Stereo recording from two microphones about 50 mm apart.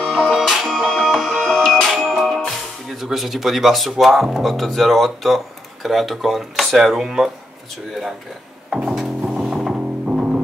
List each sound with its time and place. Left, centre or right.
0.3 s music: centre
1.1 s music: centre
2.2 s speech: centre
8.8 s music: centre
9.8 s music: right